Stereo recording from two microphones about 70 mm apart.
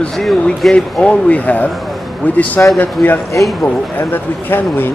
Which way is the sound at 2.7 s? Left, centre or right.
Left.